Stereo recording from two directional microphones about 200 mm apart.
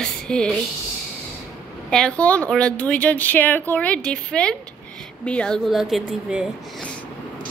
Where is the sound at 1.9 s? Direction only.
5° left (ahead or behind).